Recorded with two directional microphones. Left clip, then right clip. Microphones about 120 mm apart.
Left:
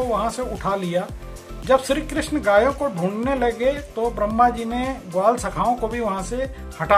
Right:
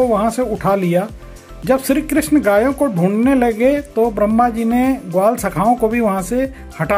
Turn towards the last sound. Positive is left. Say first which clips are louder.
# right 5 dB
turn(degrees=-35)  # may be behind; listen again after turning